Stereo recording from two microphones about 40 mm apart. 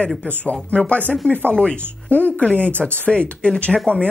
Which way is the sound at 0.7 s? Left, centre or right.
Left.